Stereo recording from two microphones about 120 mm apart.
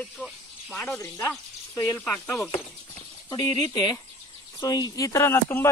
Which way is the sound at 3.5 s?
40° left (ahead or behind).